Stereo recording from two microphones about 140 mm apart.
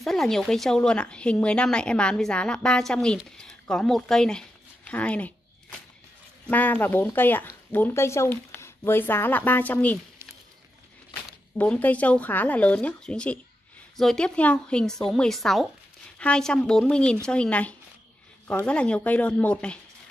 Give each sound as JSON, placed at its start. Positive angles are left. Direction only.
{"t": 0.0, "sound": "a woman's voice", "side_deg": 0}
{"t": 6.4, "sound": "speech", "side_deg": 10}
{"t": 11.5, "sound": "a woman's voice", "side_deg": 10}